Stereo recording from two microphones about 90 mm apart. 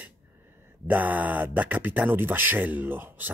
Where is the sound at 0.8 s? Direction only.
20° right (ahead or behind).